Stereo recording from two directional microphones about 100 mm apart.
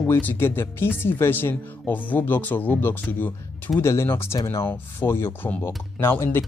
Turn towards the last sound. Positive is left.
turn(degrees=25)  # may be behind; listen again after turning